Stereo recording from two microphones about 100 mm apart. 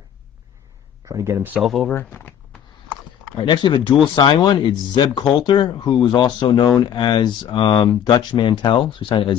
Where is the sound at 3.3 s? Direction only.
50° left (ahead or behind).